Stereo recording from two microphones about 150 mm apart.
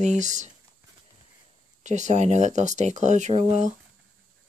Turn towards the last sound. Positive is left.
turn(degrees=-50)  # may be behind; listen again after turning